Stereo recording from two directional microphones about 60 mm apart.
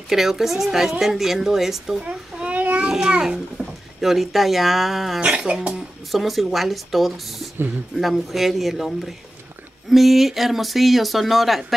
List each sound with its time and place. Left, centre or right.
0.1 s a woman's voice: centre
2.0 s a sound: right
3.1 s a child's voice: centre
5.2 s speech: centre
6.1 s a woman's voice: centre